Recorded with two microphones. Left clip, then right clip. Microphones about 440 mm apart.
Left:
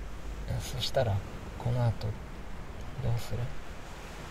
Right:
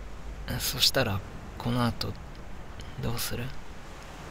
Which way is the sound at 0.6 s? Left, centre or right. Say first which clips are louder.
Right 5 dB; centre.